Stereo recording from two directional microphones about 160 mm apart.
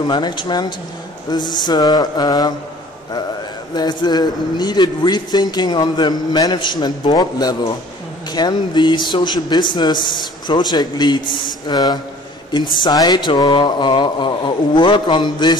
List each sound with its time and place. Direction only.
0.0 s a woman's voice: 25° left (ahead or behind)
3.7 s a woman's voice: 25° left (ahead or behind)